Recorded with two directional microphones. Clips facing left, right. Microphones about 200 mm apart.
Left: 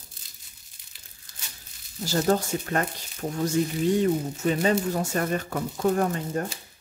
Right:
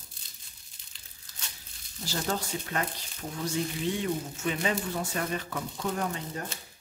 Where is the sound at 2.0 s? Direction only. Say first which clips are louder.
Left 9 dB; 45° left (ahead or behind).